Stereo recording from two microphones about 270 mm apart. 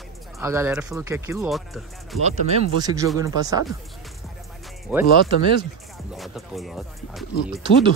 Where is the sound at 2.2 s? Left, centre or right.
Centre.